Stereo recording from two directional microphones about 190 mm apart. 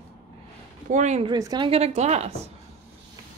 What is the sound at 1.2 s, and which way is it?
A woman's voice, 20° right (ahead or behind).